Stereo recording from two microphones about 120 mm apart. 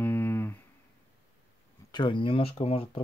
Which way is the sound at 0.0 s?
15° left (ahead or behind).